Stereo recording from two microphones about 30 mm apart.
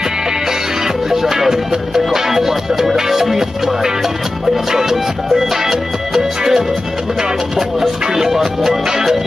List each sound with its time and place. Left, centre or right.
0.5 s music: centre
8.0 s music: centre